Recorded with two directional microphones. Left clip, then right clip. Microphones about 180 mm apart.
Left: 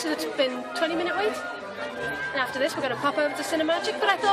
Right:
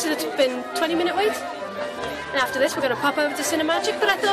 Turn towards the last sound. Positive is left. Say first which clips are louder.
# right 3 dB
turn(degrees=0)  # may be behind; listen again after turning